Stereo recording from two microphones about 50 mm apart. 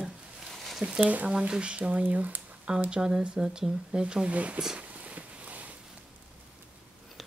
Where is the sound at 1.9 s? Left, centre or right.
Right.